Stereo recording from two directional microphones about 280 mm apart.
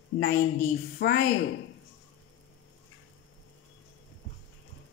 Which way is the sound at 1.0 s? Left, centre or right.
Left.